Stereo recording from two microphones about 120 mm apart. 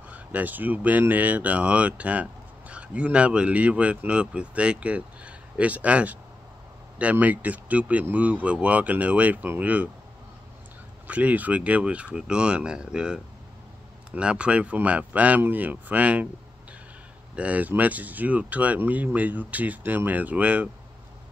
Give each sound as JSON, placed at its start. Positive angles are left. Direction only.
{"t": 0.1, "sound": "a man's voice", "side_deg": -15}
{"t": 11.1, "sound": "a man's voice", "side_deg": -10}
{"t": 17.4, "sound": "a man's voice", "side_deg": -10}